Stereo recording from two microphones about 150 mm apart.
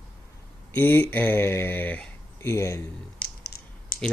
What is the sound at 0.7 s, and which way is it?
Speech, 15° left (ahead or behind).